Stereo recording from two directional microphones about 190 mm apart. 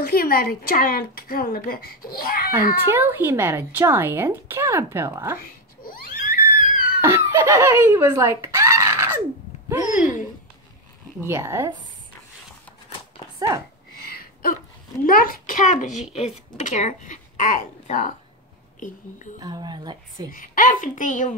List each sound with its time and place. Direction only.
0.0 s speech: 50° left (ahead or behind)
2.5 s speech: 10° right (ahead or behind)
5.4 s a sound: 50° left (ahead or behind)
7.0 s speech: 15° right (ahead or behind)
11.1 s speech: 15° right (ahead or behind)
14.0 s a sound: 55° left (ahead or behind)
15.0 s a child's voice: 50° left (ahead or behind)
19.4 s a woman's voice: 20° right (ahead or behind)
20.2 s speech: 45° left (ahead or behind)